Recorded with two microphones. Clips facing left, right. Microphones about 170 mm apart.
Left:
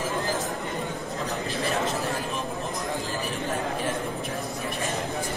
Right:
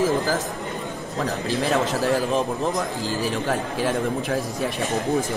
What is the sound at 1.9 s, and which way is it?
A man's voice, 75° right (ahead or behind).